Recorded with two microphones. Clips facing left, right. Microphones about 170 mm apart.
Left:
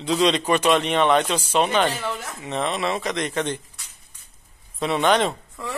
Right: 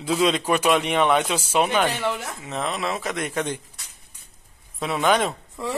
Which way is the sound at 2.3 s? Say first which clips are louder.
Left 2 dB; centre (ahead or behind).